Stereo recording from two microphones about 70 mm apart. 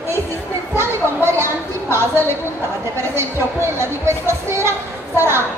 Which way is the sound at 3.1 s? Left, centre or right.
Right.